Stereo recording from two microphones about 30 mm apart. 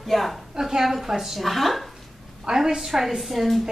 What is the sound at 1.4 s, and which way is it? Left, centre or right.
Speech, centre.